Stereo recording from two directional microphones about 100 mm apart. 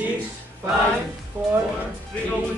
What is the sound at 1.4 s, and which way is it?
Music, 20° right (ahead or behind).